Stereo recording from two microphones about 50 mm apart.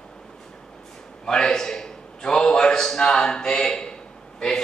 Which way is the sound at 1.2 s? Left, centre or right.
Centre.